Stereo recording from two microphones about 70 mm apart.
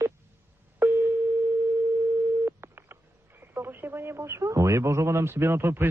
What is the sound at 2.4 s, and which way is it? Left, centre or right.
Busy signal, right.